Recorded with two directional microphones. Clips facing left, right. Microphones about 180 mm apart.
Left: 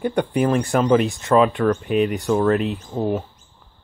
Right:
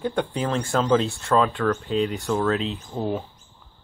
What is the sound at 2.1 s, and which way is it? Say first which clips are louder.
Speech: left 5 dB; 15° left (ahead or behind).